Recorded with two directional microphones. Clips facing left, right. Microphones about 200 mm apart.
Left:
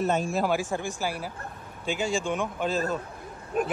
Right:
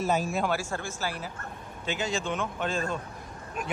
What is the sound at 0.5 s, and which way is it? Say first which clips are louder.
Speech: left 3 dB; 15° left (ahead or behind).